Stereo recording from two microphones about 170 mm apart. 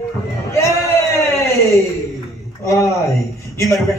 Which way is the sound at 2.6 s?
15° left (ahead or behind).